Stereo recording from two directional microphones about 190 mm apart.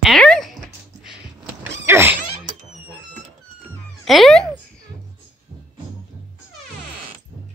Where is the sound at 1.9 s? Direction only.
10° right (ahead or behind).